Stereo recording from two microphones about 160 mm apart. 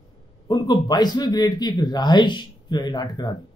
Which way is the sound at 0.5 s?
25° left (ahead or behind).